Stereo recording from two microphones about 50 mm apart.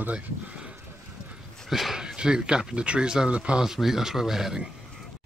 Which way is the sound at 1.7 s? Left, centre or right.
Centre.